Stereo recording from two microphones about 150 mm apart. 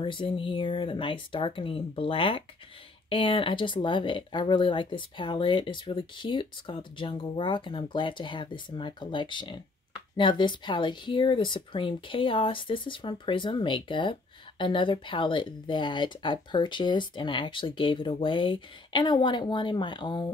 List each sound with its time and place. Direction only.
0.0 s speech: 35° left (ahead or behind)